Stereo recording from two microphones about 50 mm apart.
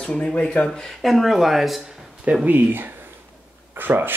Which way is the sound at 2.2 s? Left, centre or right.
Right.